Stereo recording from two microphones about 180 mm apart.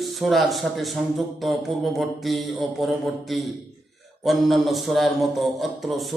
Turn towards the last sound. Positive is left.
turn(degrees=0)  # may be behind; listen again after turning